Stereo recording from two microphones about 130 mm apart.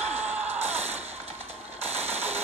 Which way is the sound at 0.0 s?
60° right (ahead or behind).